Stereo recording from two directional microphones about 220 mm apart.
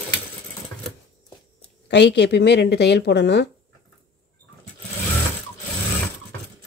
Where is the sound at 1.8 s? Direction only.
50° left (ahead or behind).